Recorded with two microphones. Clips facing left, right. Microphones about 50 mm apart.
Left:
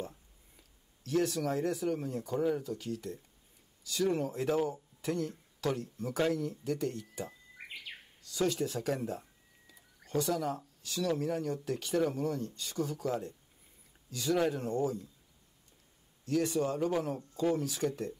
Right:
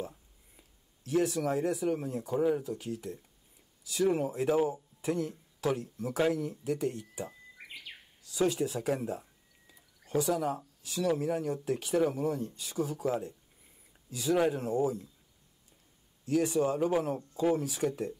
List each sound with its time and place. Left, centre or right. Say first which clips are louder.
0.6 s speech: right 1 dB; centre
9.7 s a sound: right 3 dB; centre
10.9 s speech: right 2 dB; centre
16.3 s speech: right 3 dB; right